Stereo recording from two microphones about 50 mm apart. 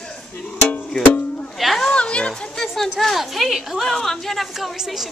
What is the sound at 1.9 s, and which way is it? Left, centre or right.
Speech, left.